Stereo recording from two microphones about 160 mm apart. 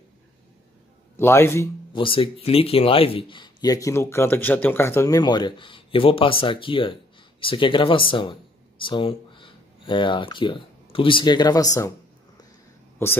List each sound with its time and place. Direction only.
1.1 s a man's voice: 15° left (ahead or behind)
2.0 s a man's voice: 35° left (ahead or behind)
13.0 s a man's voice: 15° left (ahead or behind)